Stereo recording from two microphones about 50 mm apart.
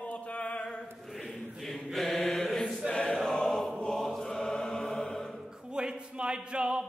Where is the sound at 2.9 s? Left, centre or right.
Centre.